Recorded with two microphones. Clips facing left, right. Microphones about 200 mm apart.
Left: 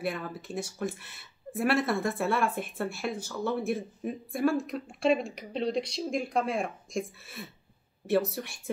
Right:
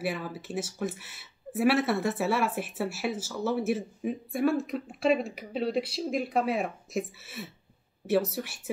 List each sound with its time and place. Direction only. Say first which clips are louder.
0.0 s speech: right 1 dB; 5° right (ahead or behind)